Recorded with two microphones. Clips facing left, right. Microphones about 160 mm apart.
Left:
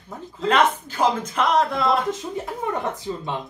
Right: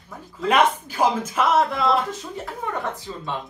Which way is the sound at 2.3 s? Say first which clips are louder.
Left 3 dB; 20° left (ahead or behind).